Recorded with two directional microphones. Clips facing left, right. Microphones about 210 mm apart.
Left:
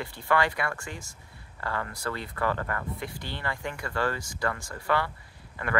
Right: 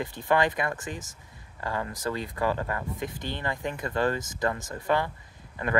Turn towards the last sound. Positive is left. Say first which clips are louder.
# right 3 dB
turn(degrees=-20)  # may be behind; listen again after turning